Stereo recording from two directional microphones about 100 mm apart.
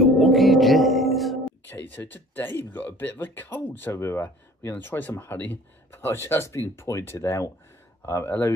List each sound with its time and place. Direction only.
0.0 s music: centre (ahead or behind)
1.8 s speech: 20° left (ahead or behind)